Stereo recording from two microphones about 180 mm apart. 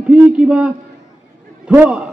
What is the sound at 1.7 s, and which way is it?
Speech, 10° right (ahead or behind).